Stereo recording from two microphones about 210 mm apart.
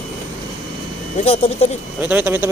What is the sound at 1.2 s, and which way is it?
Speech, 30° left (ahead or behind).